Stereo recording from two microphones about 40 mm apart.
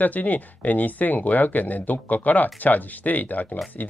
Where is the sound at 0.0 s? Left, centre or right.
Left.